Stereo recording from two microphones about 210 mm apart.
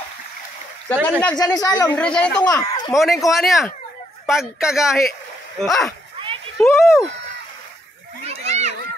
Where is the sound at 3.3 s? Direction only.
Centre (ahead or behind).